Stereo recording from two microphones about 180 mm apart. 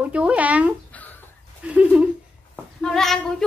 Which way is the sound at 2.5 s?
5° left (ahead or behind).